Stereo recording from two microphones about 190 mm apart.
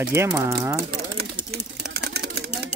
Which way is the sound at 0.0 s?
15° right (ahead or behind).